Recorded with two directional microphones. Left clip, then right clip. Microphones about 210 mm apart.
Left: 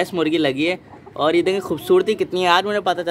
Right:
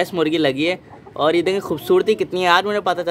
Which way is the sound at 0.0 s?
Centre (ahead or behind).